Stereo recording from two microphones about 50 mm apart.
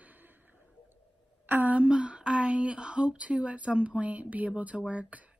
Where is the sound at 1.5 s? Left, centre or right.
Right.